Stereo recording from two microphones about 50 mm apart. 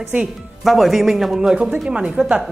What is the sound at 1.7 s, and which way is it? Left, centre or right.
Speech, right.